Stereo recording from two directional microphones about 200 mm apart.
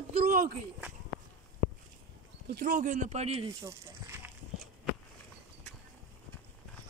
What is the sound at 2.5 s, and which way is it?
Speech, 40° right (ahead or behind).